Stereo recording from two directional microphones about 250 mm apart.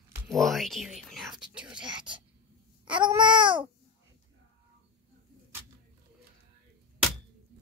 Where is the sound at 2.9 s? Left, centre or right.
Centre.